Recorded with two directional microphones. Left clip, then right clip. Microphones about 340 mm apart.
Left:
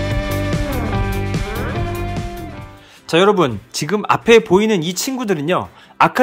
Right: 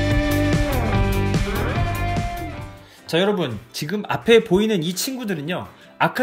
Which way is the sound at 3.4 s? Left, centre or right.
Centre.